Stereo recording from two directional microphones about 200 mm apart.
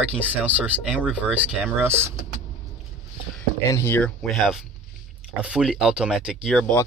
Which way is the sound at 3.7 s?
15° left (ahead or behind).